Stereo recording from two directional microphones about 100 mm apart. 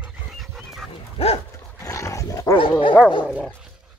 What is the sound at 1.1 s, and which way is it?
Dog, 90° left.